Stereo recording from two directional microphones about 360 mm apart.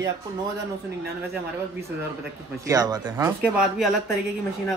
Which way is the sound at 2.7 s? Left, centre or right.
Centre.